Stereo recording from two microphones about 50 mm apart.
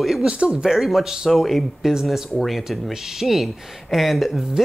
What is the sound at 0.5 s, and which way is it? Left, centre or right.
Speech, centre.